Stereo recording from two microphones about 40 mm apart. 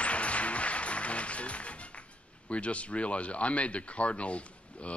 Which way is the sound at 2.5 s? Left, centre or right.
Left.